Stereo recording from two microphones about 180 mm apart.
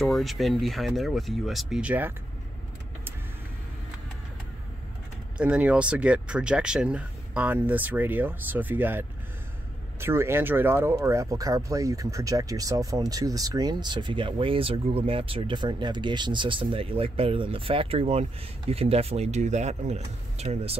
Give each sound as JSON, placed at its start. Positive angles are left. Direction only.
{"t": 0.0, "sound": "speech", "side_deg": 0}
{"t": 5.4, "sound": "speech", "side_deg": -5}